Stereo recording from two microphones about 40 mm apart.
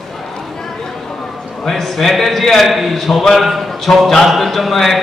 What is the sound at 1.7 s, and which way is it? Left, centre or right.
Speech, centre.